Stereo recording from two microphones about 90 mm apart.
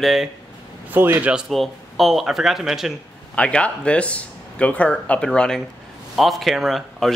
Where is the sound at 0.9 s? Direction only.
20° right (ahead or behind).